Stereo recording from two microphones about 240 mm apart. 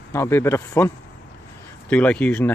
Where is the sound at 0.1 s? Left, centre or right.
Centre.